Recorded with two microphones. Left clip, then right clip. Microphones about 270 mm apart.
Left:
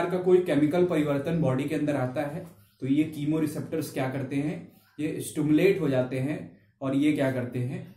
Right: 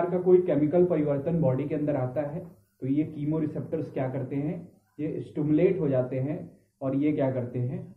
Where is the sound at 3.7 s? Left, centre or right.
Left.